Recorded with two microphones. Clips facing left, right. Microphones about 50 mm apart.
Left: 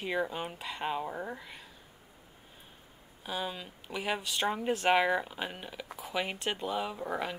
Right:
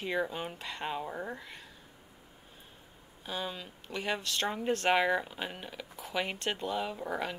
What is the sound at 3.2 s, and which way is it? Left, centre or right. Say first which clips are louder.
Speech: left 1 dB; centre.